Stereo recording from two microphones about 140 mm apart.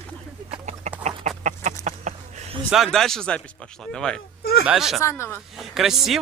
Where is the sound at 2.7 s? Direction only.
Centre (ahead or behind).